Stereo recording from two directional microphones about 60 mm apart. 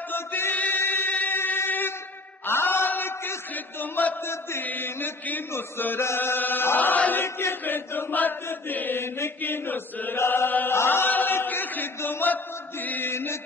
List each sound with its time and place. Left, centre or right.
0.1 s choir: left
2.4 s a sound: left
3.8 s chant: left
4.3 s chant: left
4.6 s mantra: left
5.5 s chant: left
7.2 s chant: left
7.6 s chant: left
13.1 s chant: left